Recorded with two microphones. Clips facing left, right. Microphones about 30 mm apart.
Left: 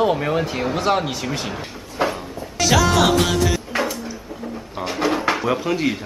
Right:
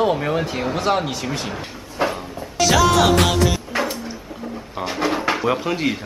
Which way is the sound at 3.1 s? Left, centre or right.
Right.